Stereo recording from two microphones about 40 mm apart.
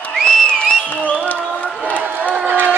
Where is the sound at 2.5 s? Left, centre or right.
Right.